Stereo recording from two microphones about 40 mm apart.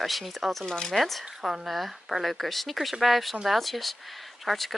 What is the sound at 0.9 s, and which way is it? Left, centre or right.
Speech, centre.